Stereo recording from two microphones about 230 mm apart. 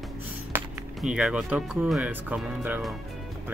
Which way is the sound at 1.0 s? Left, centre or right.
Centre.